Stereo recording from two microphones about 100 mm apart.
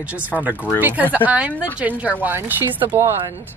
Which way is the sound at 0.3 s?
15° right (ahead or behind).